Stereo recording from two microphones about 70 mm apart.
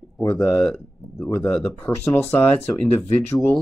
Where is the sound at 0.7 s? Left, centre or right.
Left.